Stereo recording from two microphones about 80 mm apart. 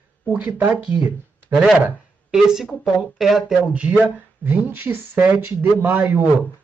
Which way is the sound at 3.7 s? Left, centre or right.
Centre.